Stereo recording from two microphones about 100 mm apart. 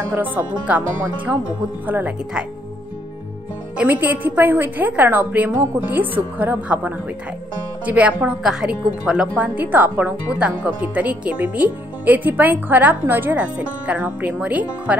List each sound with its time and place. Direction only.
0.1 s speech: 15° right (ahead or behind)
3.7 s speech: 15° right (ahead or behind)